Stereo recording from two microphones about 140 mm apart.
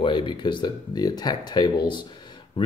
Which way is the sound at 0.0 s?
35° left (ahead or behind).